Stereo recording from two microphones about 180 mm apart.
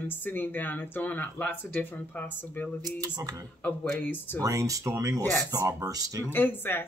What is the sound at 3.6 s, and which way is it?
Speech, 10° left (ahead or behind).